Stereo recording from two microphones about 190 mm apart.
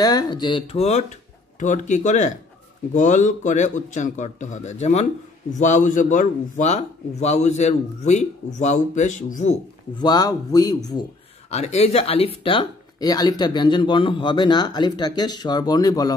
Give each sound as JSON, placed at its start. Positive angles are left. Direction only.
{"t": 0.0, "sound": "a man's voice", "side_deg": 20}
{"t": 9.9, "sound": "speech", "side_deg": 20}
{"t": 11.5, "sound": "speech", "side_deg": 35}